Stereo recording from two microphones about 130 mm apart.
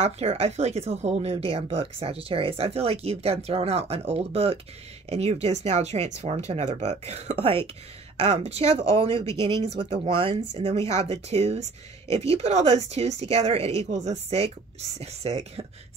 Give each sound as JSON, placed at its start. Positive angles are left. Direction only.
{"t": 0.0, "sound": "speech", "side_deg": -50}
{"t": 9.2, "sound": "speech", "side_deg": 20}
{"t": 9.6, "sound": "speech", "side_deg": -40}
{"t": 13.8, "sound": "speech", "side_deg": -65}